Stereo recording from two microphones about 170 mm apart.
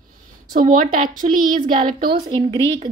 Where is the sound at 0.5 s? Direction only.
55° right (ahead or behind).